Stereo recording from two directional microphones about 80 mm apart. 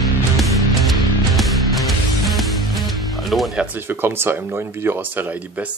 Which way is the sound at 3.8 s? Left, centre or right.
Right.